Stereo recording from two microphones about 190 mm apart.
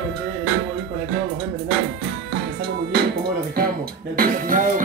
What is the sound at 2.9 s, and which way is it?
Music, 55° right (ahead or behind).